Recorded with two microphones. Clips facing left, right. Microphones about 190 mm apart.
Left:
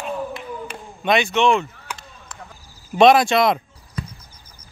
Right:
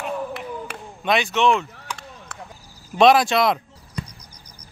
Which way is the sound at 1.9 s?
65° right (ahead or behind).